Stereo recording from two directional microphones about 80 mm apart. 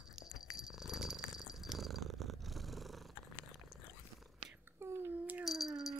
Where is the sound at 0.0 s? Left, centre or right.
Centre.